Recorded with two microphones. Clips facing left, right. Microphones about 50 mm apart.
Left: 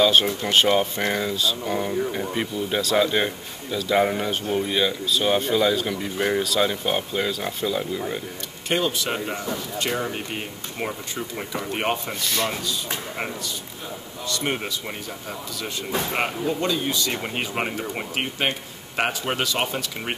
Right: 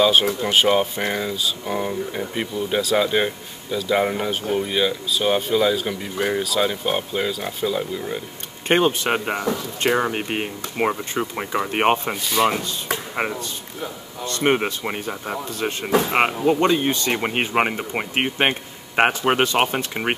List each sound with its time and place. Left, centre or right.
0.0 s speech: centre
8.6 s speech: right